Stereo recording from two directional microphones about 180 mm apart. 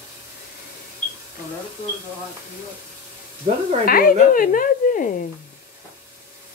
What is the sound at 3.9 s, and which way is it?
Speech, 55° left (ahead or behind).